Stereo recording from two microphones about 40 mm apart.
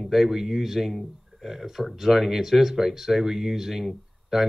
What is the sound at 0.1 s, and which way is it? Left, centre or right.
A man's voice, centre.